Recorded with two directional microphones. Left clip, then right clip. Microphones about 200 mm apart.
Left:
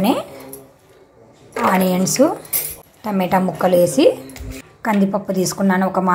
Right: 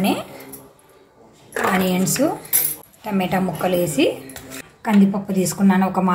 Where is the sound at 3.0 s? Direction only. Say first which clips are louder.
Left 4 dB; 20° left (ahead or behind).